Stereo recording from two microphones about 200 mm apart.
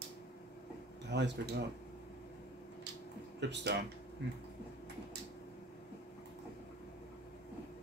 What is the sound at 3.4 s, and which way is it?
Speech, 60° right (ahead or behind).